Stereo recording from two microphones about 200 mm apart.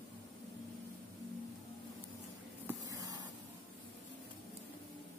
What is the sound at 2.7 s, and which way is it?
Spray, 15° right (ahead or behind).